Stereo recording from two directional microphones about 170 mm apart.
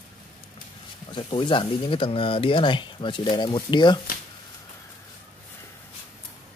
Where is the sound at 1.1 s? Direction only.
30° left (ahead or behind).